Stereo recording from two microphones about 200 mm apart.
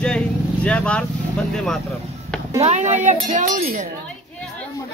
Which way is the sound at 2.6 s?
35° right (ahead or behind).